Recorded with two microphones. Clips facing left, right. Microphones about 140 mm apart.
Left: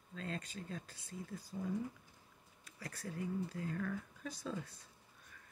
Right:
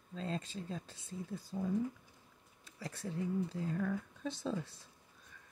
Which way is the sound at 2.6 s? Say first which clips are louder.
Right 4 dB; 25° right (ahead or behind).